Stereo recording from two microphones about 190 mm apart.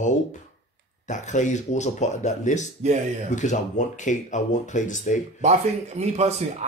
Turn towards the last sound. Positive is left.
turn(degrees=-35)  # may be behind; listen again after turning